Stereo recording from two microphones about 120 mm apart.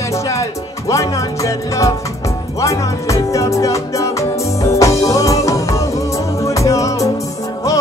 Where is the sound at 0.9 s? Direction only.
25° left (ahead or behind).